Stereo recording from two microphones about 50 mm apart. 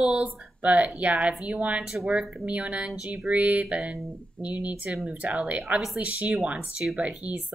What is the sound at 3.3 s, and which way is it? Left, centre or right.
Speech, right.